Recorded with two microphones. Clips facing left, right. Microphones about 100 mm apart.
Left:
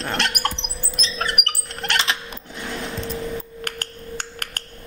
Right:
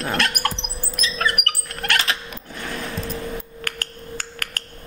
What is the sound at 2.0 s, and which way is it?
Sewing machine, 25° left (ahead or behind).